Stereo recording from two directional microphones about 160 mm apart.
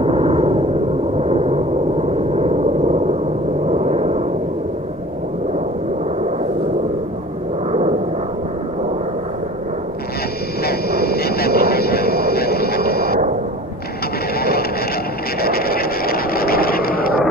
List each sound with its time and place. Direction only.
0.0 s a sound: 40° right (ahead or behind)
10.6 s vehicle: 75° left (ahead or behind)
14.4 s vehicle: 75° left (ahead or behind)